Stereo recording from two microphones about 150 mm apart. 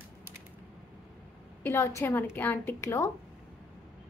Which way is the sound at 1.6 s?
20° left (ahead or behind).